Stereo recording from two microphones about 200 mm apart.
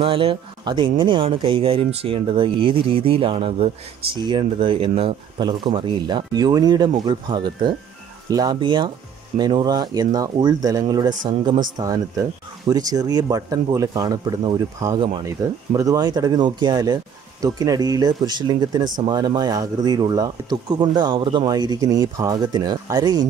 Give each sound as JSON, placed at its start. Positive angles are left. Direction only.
{"t": 0.0, "sound": "speech", "side_deg": -30}